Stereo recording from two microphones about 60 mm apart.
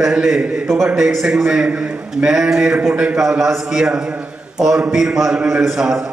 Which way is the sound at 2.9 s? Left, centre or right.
Right.